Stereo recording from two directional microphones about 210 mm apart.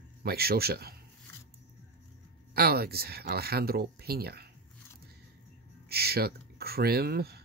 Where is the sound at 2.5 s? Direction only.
45° right (ahead or behind).